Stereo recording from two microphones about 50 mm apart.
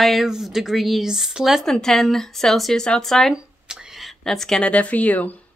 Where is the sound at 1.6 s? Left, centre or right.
Centre.